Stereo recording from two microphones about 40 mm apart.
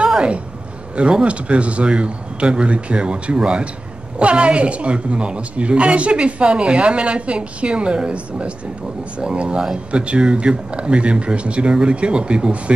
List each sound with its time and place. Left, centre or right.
1.2 s a woman's voice: right